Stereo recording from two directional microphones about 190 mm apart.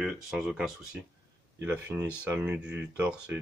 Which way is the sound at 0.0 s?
Centre (ahead or behind).